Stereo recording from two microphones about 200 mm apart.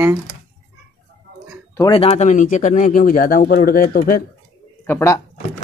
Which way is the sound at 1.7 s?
20° left (ahead or behind).